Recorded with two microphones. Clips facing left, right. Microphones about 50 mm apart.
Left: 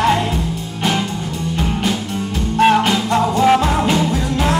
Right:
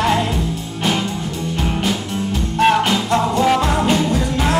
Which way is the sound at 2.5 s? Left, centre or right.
Centre.